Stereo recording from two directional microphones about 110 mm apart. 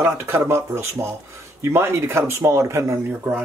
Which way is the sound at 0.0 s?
25° right (ahead or behind).